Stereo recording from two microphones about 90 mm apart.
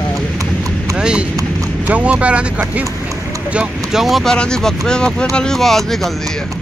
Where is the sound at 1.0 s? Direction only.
10° right (ahead or behind).